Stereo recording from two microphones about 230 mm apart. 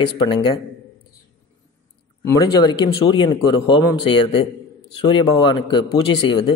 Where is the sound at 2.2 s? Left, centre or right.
Centre.